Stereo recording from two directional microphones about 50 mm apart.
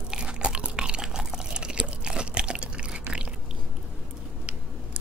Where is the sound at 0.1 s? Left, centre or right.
Centre.